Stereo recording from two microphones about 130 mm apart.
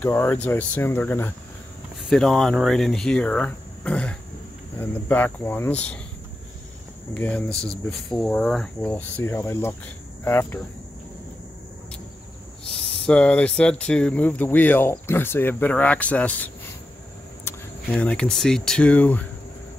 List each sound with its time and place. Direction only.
0.0 s speech: 15° left (ahead or behind)
2.0 s speech: 5° left (ahead or behind)
7.2 s speech: 10° left (ahead or behind)
8.9 s speech: 15° left (ahead or behind)
13.0 s speech: 5° left (ahead or behind)
17.5 s vehicle: 20° left (ahead or behind)
17.8 s speech: 10° left (ahead or behind)